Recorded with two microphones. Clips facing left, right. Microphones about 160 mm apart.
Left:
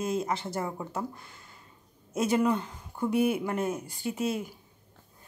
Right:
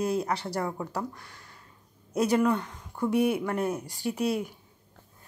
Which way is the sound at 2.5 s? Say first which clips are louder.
Right 1 dB; 30° left (ahead or behind).